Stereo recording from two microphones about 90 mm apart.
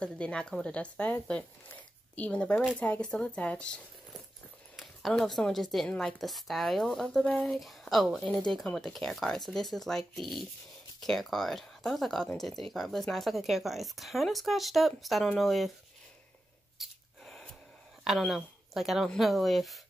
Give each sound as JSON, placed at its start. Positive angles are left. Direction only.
{"t": 0.0, "sound": "speech", "side_deg": 10}
{"t": 16.8, "sound": "a sound", "side_deg": -5}
{"t": 17.2, "sound": "gasp", "side_deg": 5}
{"t": 18.0, "sound": "speech", "side_deg": 0}